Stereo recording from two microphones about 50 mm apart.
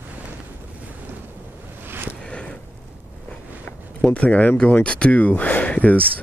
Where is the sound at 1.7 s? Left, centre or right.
Right.